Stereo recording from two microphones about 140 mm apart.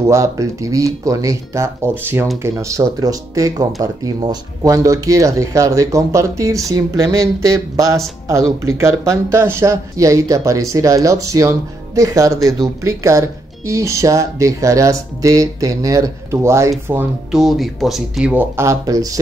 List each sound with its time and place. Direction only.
0.0 s speech: 20° right (ahead or behind)
17.3 s speech: centre (ahead or behind); by 19.1 s 25° right (ahead or behind)